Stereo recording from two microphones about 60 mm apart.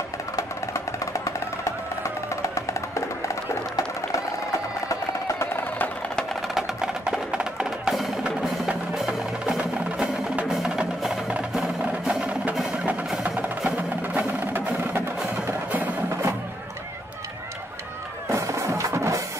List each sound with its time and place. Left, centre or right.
1.6 s music: left
6.5 s music: centre
10.5 s music: centre; by 14.6 s right
18.3 s music: right